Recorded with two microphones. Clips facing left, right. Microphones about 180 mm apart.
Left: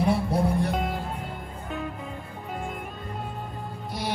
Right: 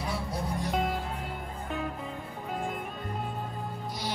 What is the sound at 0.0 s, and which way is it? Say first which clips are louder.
Music: left 10 dB; 60° left (ahead or behind).